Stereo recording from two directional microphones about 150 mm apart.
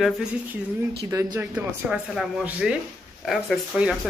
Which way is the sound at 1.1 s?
20° right (ahead or behind).